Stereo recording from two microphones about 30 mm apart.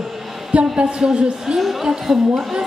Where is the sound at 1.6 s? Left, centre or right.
Centre.